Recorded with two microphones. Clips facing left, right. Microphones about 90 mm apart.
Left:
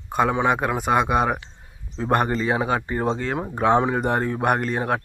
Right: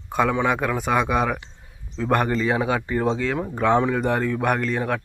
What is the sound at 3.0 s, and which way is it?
Speech, 45° left (ahead or behind).